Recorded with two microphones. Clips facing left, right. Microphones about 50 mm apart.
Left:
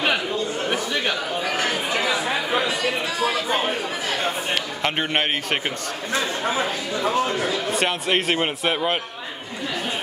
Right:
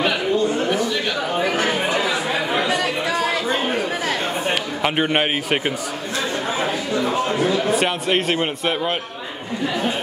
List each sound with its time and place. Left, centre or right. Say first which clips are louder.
1.4 s chatter: right 6 dB; centre
4.8 s a man's voice: right 4 dB; centre
7.1 s a man's voice: even; centre
7.7 s a man's voice: right 2 dB; centre